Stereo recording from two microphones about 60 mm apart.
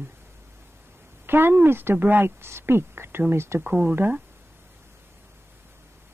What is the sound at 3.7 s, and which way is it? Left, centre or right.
Speech, right.